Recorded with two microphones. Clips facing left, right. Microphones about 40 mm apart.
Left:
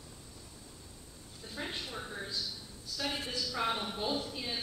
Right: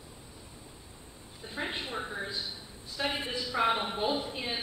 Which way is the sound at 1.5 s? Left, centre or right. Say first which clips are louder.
Right 5 dB; right.